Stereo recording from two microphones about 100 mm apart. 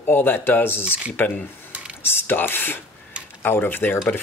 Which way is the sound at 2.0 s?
20° left (ahead or behind).